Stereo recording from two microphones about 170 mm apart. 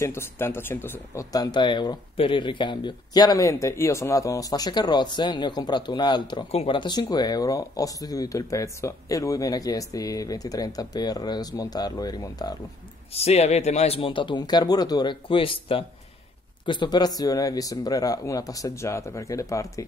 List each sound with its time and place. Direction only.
0.0 s speech: 15° left (ahead or behind)
13.1 s speech: 40° left (ahead or behind); by 19.8 s 20° left (ahead or behind)